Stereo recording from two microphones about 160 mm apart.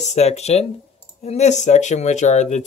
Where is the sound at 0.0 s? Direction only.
45° left (ahead or behind).